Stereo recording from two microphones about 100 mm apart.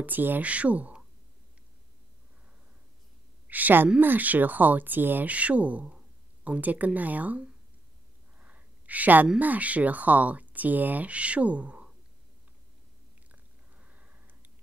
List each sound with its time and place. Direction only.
0.0 s speech: 20° right (ahead or behind)
3.4 s a woman's voice: 15° right (ahead or behind)
8.4 s a sound: 15° right (ahead or behind)
9.4 s speech: 15° right (ahead or behind)
13.3 s biting: 15° right (ahead or behind)